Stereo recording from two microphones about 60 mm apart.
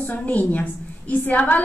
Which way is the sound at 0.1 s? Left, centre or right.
Left.